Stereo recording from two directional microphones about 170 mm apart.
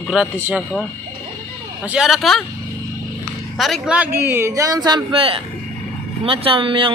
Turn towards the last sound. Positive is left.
turn(degrees=-30)  # may be behind; listen again after turning